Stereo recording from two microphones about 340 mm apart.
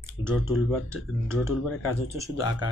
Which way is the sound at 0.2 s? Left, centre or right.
Centre.